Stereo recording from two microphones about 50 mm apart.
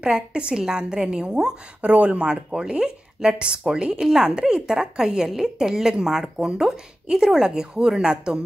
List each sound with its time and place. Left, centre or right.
0.0 s a woman's voice: centre